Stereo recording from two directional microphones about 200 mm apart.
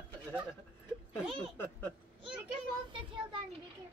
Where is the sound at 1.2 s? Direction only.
10° left (ahead or behind).